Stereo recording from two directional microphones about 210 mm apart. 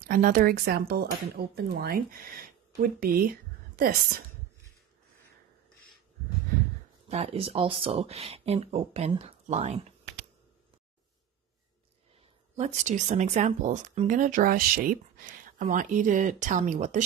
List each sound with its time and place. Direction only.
0.0 s a woman's voice: 40° right (ahead or behind)
7.1 s speech: 30° right (ahead or behind)
12.5 s speech: 35° right (ahead or behind)